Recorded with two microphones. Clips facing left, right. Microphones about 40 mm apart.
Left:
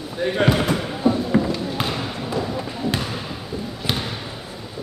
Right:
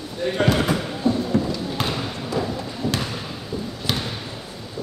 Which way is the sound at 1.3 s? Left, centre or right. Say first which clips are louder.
Left 2 dB; left.